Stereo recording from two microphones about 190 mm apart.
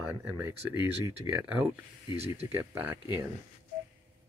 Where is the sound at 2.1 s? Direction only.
30° right (ahead or behind).